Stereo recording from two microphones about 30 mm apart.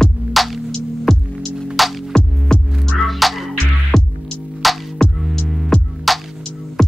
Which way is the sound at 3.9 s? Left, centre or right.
Centre.